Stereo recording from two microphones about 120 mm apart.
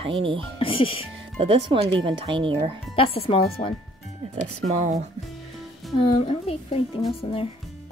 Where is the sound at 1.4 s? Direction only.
45° right (ahead or behind).